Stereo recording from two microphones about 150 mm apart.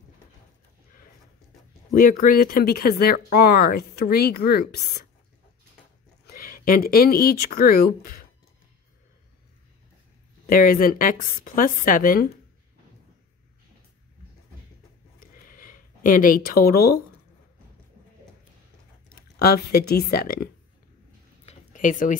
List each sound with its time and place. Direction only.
1.9 s speech: 70° left (ahead or behind); by 5.0 s 90° left
6.3 s speech: 70° left (ahead or behind)
10.4 s a woman's voice: 70° left (ahead or behind)
15.1 s a sound: 70° left (ahead or behind)
19.3 s speech: 90° left
21.5 s a sound: 60° left (ahead or behind)